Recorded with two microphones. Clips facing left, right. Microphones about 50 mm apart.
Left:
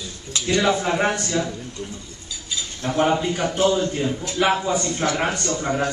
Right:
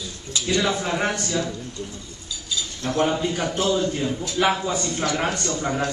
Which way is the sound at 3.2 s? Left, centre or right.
Centre.